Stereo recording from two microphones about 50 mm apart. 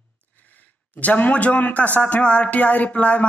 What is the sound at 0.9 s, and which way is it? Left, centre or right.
A man's voice, left.